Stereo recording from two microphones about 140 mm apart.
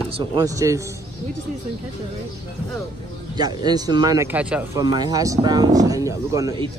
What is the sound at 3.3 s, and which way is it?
Speech, 30° right (ahead or behind).